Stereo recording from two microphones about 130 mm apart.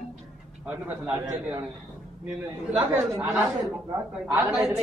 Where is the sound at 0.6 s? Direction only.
10° right (ahead or behind).